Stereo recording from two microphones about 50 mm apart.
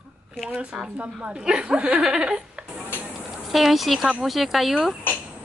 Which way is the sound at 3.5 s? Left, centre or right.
Centre.